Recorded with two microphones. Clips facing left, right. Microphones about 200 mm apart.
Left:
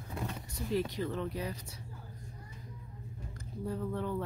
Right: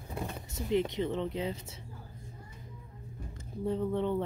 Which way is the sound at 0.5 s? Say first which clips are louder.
Right 4 dB; 20° right (ahead or behind).